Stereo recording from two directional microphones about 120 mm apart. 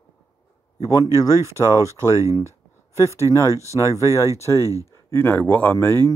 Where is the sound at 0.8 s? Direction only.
30° left (ahead or behind).